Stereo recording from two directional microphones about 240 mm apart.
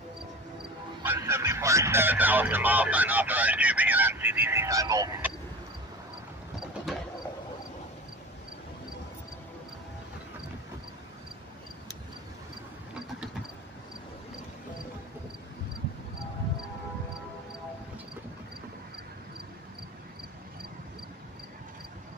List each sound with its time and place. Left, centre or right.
1.0 s speech: centre